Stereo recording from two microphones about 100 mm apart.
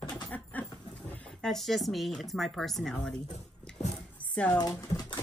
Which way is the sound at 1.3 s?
5° left (ahead or behind).